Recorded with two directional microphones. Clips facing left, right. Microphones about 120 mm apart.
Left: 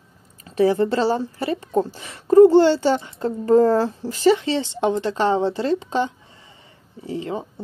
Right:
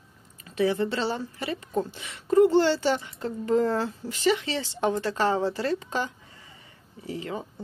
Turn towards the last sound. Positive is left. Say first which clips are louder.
# left 6 dB
turn(degrees=25)  # may be behind; listen again after turning